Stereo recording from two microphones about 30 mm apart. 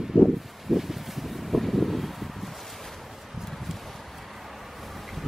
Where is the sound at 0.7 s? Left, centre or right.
Centre.